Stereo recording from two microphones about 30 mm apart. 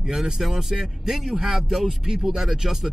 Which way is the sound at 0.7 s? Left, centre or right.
Right.